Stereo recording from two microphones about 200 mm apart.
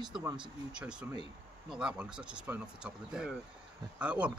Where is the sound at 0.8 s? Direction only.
5° right (ahead or behind).